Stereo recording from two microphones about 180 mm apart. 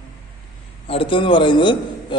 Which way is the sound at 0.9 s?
30° left (ahead or behind).